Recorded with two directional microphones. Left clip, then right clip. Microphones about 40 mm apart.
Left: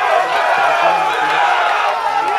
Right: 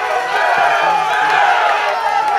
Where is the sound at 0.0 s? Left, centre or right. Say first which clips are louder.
Left 2 dB; right.